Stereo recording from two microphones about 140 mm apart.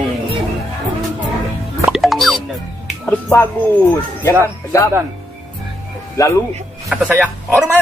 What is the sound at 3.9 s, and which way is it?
Speech, 15° left (ahead or behind).